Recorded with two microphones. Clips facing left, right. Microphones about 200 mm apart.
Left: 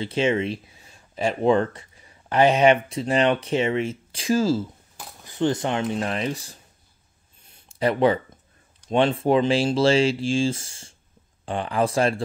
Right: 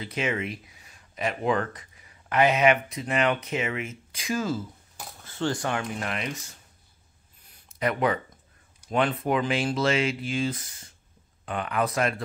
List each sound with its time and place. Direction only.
0.0 s speech: 30° left (ahead or behind)
5.2 s speech: 20° left (ahead or behind); by 6.6 s 35° left (ahead or behind)
7.4 s a sound: 25° left (ahead or behind)
8.9 s speech: 30° left (ahead or behind)